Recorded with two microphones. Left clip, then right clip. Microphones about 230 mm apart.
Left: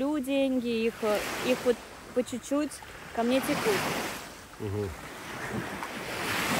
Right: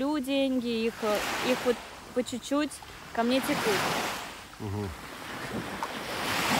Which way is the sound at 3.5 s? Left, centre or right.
Right.